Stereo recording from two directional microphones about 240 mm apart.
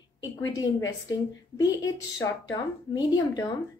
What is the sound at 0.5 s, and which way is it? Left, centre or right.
A woman's voice, centre.